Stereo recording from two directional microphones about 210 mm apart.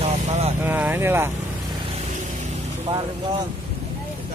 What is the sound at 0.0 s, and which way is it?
Vehicle, 30° right (ahead or behind).